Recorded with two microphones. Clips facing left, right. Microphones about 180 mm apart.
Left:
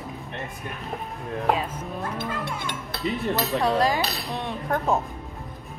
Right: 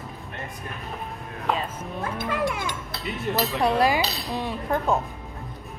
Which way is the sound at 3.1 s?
35° left (ahead or behind).